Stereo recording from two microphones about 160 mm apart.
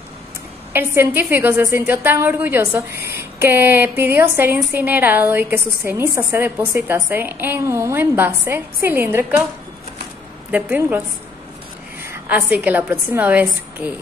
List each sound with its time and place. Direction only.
0.7 s a woman's voice: 15° right (ahead or behind)
10.5 s a woman's voice: 10° right (ahead or behind)
12.0 s a woman's voice: 15° right (ahead or behind)